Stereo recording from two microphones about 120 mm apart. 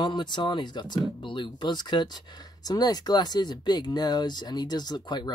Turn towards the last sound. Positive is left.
turn(degrees=35)  # may be behind; listen again after turning